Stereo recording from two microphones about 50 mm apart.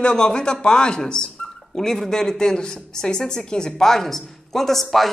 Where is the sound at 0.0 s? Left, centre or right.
Centre.